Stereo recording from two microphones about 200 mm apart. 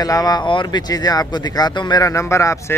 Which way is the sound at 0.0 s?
20° left (ahead or behind).